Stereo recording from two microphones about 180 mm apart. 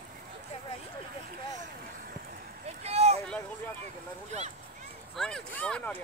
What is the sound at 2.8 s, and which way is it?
Vehicle, 35° right (ahead or behind).